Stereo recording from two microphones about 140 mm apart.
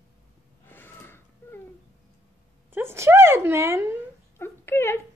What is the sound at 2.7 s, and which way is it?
Speech, 15° right (ahead or behind).